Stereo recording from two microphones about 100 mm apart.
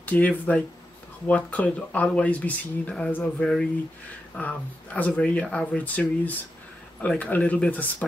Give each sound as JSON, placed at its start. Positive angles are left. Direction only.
{"t": 0.0, "sound": "speech", "side_deg": 15}